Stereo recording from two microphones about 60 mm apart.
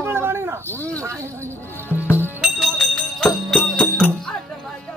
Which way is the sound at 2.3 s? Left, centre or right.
Centre.